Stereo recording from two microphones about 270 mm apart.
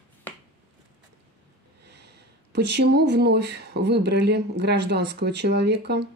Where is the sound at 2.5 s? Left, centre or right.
Right.